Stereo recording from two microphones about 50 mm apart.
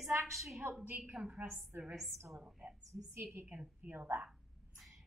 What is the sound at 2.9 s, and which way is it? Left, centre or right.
Speech, right.